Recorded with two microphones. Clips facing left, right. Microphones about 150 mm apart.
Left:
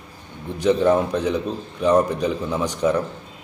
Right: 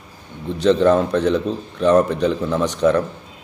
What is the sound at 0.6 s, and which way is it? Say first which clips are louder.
A man's voice: right 3 dB; 10° left (ahead or behind).